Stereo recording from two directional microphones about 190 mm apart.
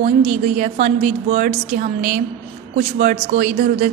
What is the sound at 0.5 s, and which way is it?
A woman's voice, 40° right (ahead or behind).